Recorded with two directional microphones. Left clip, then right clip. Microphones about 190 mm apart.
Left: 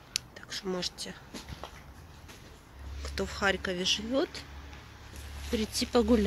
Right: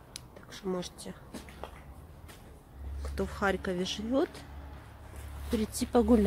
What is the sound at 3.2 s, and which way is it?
Speech, 15° right (ahead or behind).